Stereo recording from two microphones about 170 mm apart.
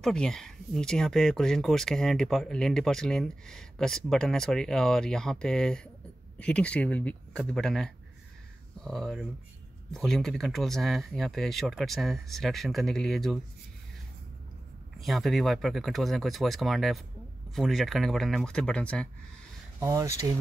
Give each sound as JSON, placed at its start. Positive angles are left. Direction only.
{"t": 0.0, "sound": "speech", "side_deg": 5}
{"t": 15.0, "sound": "speech", "side_deg": 0}
{"t": 19.8, "sound": "speech", "side_deg": -20}